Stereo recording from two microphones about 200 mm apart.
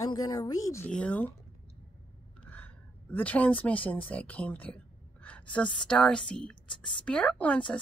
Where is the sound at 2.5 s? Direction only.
10° left (ahead or behind).